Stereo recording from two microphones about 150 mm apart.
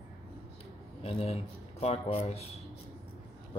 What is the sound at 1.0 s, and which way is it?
Speech, 40° left (ahead or behind).